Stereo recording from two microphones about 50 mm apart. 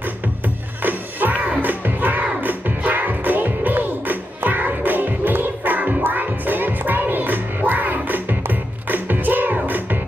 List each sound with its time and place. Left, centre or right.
0.8 s music: right